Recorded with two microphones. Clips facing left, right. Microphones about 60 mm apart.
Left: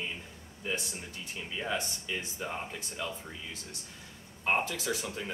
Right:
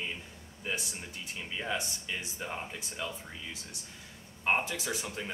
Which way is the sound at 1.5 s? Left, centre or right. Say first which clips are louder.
Left 1 dB; centre.